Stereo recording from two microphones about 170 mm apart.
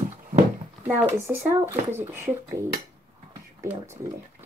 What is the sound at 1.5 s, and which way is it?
Speech, 15° right (ahead or behind).